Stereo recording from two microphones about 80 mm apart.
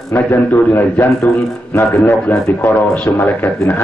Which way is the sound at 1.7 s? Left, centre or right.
Left.